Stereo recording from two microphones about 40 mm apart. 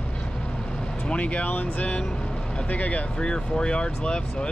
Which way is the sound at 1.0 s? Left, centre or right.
Left.